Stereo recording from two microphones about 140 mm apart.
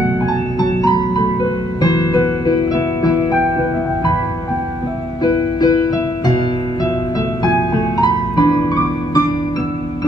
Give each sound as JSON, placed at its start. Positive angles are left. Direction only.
{"t": 0.6, "sound": "music", "side_deg": 30}
{"t": 5.2, "sound": "music", "side_deg": 30}
{"t": 8.0, "sound": "music", "side_deg": 30}